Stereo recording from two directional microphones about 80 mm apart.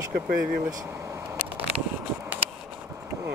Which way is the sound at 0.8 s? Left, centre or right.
Right.